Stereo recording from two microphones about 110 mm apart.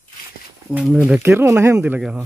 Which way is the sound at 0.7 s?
5° right (ahead or behind).